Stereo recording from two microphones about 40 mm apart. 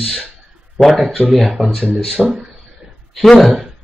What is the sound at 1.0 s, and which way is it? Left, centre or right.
Speech, centre.